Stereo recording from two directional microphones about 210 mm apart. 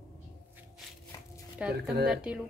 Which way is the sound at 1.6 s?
5° right (ahead or behind).